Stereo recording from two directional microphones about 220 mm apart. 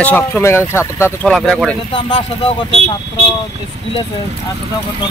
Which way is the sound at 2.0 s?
25° left (ahead or behind).